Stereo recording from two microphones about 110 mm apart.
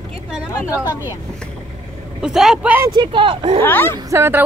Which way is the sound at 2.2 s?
5° right (ahead or behind).